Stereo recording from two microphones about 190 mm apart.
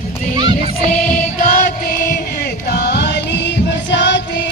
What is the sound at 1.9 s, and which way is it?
Music, 55° left (ahead or behind).